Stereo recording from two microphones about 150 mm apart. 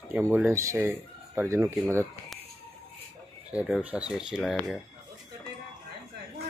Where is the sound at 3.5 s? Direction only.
10° right (ahead or behind).